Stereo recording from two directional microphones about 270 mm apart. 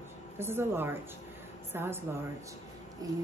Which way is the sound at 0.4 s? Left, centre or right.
Centre.